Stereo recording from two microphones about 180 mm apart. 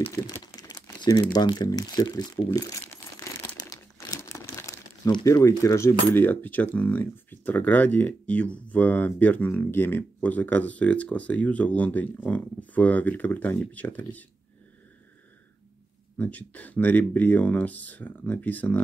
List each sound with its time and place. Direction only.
0.0 s speech: 15° left (ahead or behind)
16.2 s speech: 10° left (ahead or behind)